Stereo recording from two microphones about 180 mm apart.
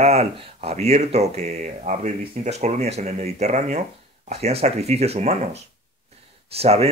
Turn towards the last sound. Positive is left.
turn(degrees=-35)  # may be behind; listen again after turning